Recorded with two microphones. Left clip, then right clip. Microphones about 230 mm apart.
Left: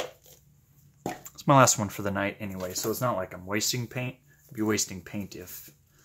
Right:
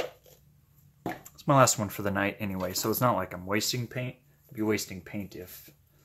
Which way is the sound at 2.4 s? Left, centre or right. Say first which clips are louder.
Right 1 dB; right.